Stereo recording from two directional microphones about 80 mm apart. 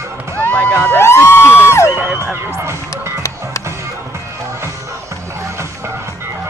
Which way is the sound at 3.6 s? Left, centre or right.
Right.